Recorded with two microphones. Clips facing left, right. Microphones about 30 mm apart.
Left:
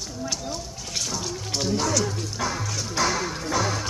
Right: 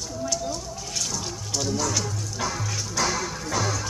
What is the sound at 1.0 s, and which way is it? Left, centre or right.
Water, centre.